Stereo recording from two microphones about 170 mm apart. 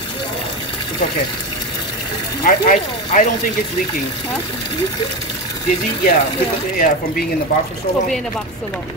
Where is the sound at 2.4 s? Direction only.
55° left (ahead or behind).